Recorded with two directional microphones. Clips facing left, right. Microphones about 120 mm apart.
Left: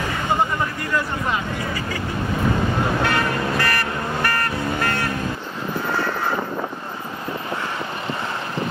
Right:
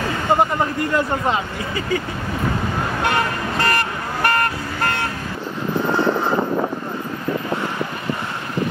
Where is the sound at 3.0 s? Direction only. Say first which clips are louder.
Even; 20° right (ahead or behind).